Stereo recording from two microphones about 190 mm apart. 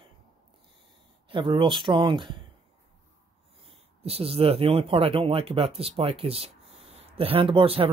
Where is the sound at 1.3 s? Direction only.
25° right (ahead or behind).